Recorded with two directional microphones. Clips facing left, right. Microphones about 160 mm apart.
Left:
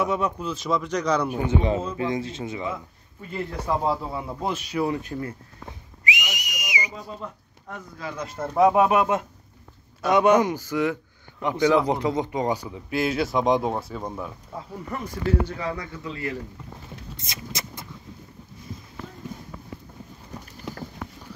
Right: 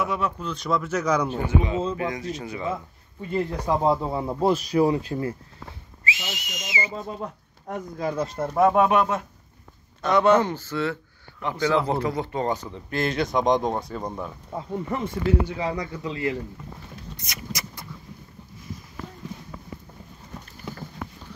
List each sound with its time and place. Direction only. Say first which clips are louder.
0.0 s speech: left 2 dB; 20° left (ahead or behind)
0.4 s speech: even; 5° left (ahead or behind)
1.5 s speech: even; 30° left (ahead or behind)
3.6 s speech: right 2 dB; 20° right (ahead or behind); by 4.9 s 35° right (ahead or behind)
4.9 s speech: right 3 dB; 25° right (ahead or behind)
5.7 s whistle: left 2 dB; 15° left (ahead or behind)
7.2 s speech: right 3 dB; 45° right (ahead or behind)
8.4 s speech: left 2 dB; 10° right (ahead or behind)
8.6 s speech: left 1 dB; 10° left (ahead or behind)
14.5 s speech: right 9 dB; 25° right (ahead or behind)
17.2 s speech: right 1 dB; 25° left (ahead or behind)